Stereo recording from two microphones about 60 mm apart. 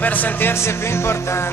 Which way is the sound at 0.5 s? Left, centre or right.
Left.